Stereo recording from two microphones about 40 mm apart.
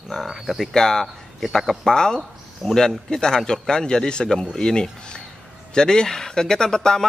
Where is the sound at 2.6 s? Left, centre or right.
Centre.